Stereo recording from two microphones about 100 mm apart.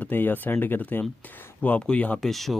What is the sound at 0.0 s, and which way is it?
Speech, 20° left (ahead or behind).